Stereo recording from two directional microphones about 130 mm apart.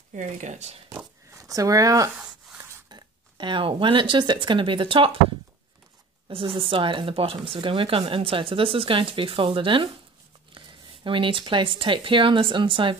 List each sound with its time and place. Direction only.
0.1 s speech: 65° right (ahead or behind)
0.9 s zipper: 25° right (ahead or behind)
2.1 s a sound: 10° right (ahead or behind)
2.9 s speech: 35° right (ahead or behind)
6.2 s speech: 40° right (ahead or behind)
11.1 s speech: 40° right (ahead or behind)